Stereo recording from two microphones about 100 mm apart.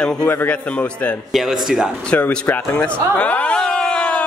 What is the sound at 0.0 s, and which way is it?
A man's voice, 10° left (ahead or behind).